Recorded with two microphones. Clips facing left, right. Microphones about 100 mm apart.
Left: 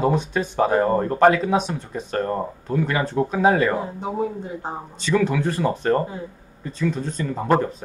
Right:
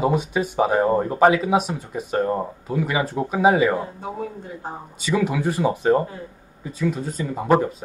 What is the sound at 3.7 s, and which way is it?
Speech, 15° left (ahead or behind).